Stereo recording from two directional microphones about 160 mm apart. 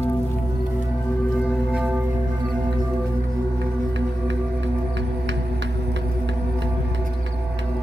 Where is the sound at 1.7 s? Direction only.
5° right (ahead or behind).